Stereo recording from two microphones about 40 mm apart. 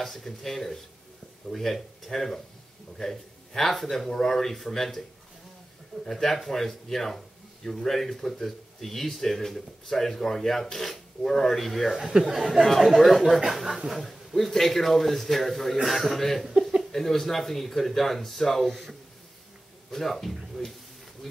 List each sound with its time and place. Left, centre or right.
0.0 s speech: centre
6.0 s speech: centre
12.1 s speech: centre
12.6 s a man's voice: centre